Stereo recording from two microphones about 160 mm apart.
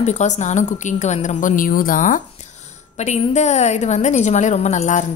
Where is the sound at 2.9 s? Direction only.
45° left (ahead or behind).